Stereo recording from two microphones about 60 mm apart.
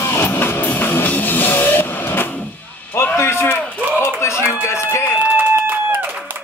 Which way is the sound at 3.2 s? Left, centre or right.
Left.